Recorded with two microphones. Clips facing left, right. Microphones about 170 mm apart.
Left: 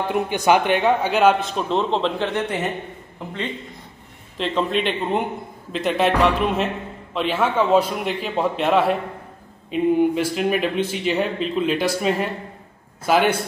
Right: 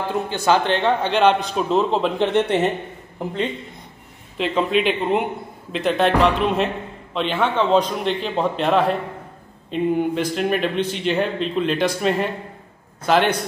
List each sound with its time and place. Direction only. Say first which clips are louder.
0.5 s a man's voice: left 1 dB; 10° left (ahead or behind); by 2.1 s 5° right (ahead or behind)
2.1 s speech: right 5 dB; 25° right (ahead or behind)
4.4 s a man's voice: right 2 dB; 5° right (ahead or behind)